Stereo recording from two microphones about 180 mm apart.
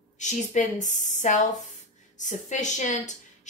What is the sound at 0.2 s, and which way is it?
A woman's voice, 45° left (ahead or behind).